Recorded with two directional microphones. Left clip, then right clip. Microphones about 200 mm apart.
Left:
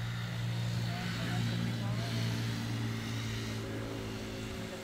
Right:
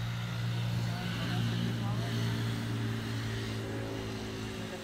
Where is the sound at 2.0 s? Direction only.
35° left (ahead or behind); by 4.7 s 50° left (ahead or behind).